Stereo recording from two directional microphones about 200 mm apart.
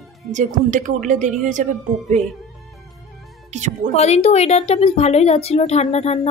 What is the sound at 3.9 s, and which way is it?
A woman's voice, 35° left (ahead or behind).